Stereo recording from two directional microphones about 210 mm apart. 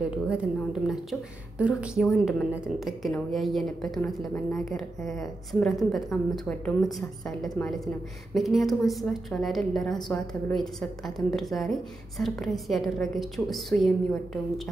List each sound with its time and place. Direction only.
0.0 s a woman's voice: 5° right (ahead or behind)